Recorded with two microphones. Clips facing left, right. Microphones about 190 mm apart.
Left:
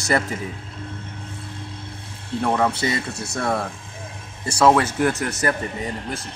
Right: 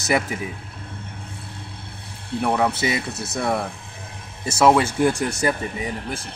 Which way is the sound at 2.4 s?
10° right (ahead or behind).